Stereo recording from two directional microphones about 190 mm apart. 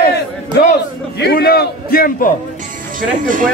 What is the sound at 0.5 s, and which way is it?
A man's voice, 60° left (ahead or behind).